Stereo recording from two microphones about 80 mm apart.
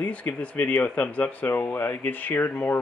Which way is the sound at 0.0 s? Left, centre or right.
Left.